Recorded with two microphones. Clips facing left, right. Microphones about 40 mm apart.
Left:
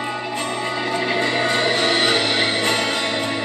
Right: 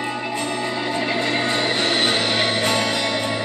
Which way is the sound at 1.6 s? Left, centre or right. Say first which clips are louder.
Left 2 dB; left.